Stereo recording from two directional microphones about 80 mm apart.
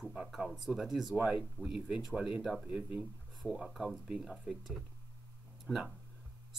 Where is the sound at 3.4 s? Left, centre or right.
Centre.